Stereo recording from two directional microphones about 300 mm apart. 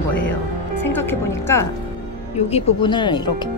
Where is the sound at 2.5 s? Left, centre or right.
Centre.